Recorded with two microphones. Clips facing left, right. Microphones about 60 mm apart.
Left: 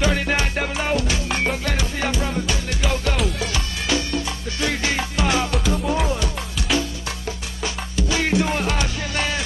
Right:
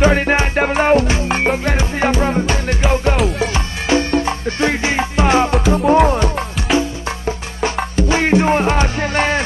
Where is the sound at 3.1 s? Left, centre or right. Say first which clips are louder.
Right 7 dB; centre.